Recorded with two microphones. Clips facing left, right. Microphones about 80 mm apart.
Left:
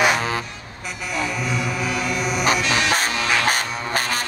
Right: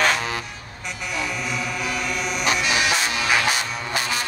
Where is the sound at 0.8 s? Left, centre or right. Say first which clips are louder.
Left 2 dB; centre.